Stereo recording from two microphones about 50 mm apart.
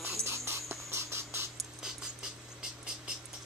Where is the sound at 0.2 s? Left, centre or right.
Right.